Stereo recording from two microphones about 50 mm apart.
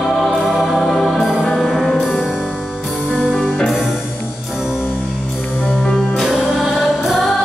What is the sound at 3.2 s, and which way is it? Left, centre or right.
Music, centre.